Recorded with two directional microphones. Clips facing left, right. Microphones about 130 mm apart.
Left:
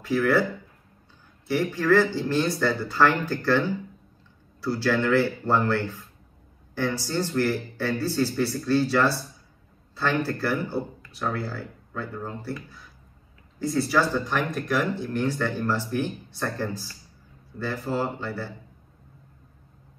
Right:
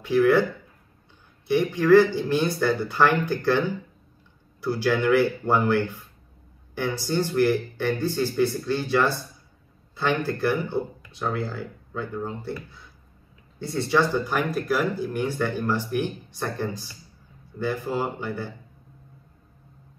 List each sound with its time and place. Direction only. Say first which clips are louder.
0.0 s speech: right 3 dB; 15° right (ahead or behind)
1.5 s speech: right 4 dB; 20° right (ahead or behind)
6.7 s a sound: left 1 dB; 15° right (ahead or behind)
7.1 s speech: right 6 dB; 15° right (ahead or behind)
13.8 s speech: right 5 dB; 15° right (ahead or behind)